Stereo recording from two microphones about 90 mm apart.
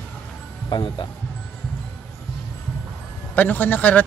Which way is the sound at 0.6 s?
55° left (ahead or behind).